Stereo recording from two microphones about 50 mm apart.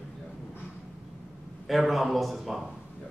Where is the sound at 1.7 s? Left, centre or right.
Centre.